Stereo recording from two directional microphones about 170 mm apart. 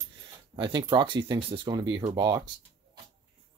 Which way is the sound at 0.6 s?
25° right (ahead or behind).